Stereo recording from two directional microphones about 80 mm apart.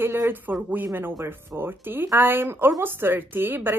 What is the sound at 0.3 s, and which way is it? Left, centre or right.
A woman's voice, right.